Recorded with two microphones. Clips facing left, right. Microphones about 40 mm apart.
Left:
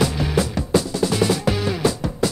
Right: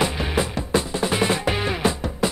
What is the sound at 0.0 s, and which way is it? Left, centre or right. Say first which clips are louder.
Music: left 2 dB; right.